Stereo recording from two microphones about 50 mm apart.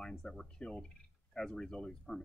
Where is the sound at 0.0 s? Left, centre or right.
Centre.